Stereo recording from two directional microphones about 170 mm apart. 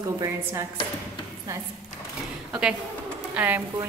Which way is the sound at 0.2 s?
20° right (ahead or behind).